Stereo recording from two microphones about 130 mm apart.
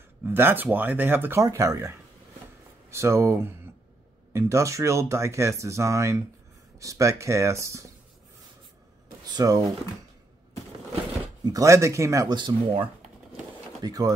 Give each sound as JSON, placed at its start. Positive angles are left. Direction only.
{"t": 0.2, "sound": "speech", "side_deg": -15}
{"t": 1.4, "sound": "speech", "side_deg": -25}
{"t": 9.3, "sound": "speech", "side_deg": -30}
{"t": 11.4, "sound": "speech", "side_deg": -25}
{"t": 13.8, "sound": "speech", "side_deg": -30}